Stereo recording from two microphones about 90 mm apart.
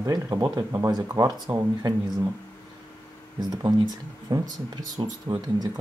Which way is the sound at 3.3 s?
50° right (ahead or behind).